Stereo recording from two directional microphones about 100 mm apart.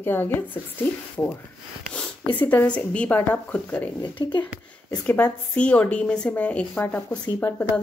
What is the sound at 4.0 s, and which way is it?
Speech, 50° left (ahead or behind).